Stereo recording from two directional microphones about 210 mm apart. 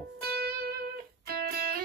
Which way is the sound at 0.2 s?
50° right (ahead or behind).